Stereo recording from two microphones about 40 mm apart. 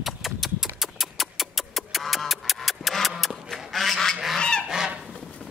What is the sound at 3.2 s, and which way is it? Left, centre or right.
Goose, centre.